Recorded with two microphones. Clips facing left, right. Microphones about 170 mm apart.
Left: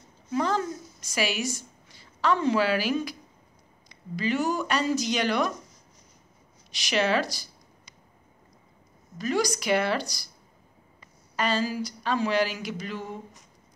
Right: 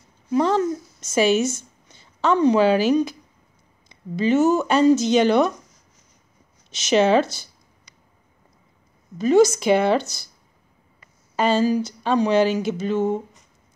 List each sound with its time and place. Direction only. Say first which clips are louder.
0.3 s a woman's voice: right 7 dB; 20° right (ahead or behind)
7.0 s speech: right 7 dB; 25° right (ahead or behind)
9.4 s speech: right 9 dB; 25° right (ahead or behind)
11.4 s speech: right 8 dB; 25° right (ahead or behind)